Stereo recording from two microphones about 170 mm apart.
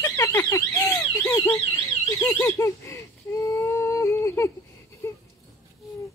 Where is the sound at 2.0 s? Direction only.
15° left (ahead or behind).